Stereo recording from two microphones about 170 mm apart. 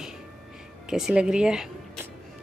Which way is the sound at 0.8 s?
5° right (ahead or behind).